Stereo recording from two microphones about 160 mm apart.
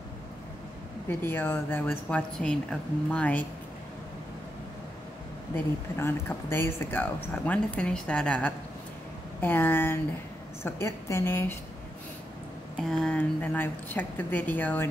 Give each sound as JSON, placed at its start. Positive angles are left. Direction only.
{"t": 1.0, "sound": "speech", "side_deg": 15}
{"t": 5.9, "sound": "speech", "side_deg": 15}
{"t": 12.7, "sound": "speech", "side_deg": 5}